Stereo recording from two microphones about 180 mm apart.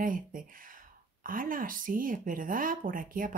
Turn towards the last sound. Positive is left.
turn(degrees=-50)  # may be behind; listen again after turning